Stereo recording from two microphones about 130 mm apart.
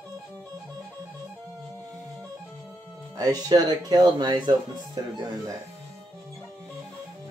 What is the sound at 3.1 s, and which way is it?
Speech, 30° right (ahead or behind).